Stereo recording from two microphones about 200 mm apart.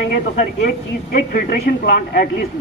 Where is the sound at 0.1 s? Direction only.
50° left (ahead or behind).